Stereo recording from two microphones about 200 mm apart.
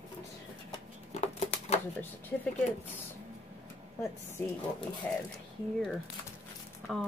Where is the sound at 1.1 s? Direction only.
30° left (ahead or behind).